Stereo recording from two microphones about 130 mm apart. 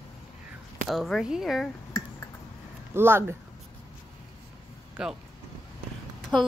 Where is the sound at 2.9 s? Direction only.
20° right (ahead or behind).